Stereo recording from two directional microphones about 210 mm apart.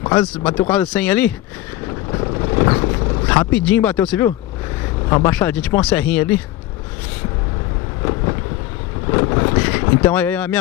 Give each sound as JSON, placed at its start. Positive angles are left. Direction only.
{"t": 0.4, "sound": "speech", "side_deg": 20}
{"t": 0.7, "sound": "speech", "side_deg": 5}
{"t": 2.0, "sound": "vehicle", "side_deg": 20}
{"t": 3.3, "sound": "speech", "side_deg": 5}
{"t": 9.0, "sound": "speech", "side_deg": 20}